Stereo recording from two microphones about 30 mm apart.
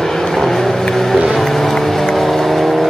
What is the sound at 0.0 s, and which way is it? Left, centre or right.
Vehicle, centre.